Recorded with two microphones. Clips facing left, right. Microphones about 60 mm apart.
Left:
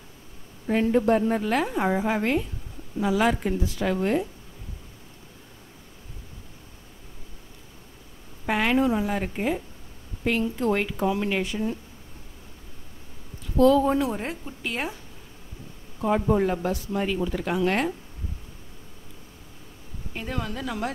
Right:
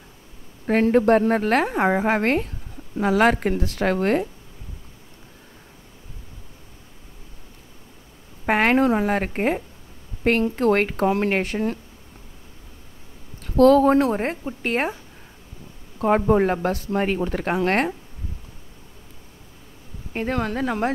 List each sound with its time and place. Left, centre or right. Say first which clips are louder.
0.7 s a woman's voice: right 4 dB; right
8.5 s a woman's voice: right 4 dB; right
13.4 s a woman's voice: right 4 dB; right
16.3 s a woman's voice: right 4 dB; right
20.1 s a woman's voice: right 7 dB; right